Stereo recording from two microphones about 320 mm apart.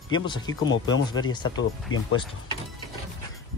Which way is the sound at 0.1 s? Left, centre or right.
Centre.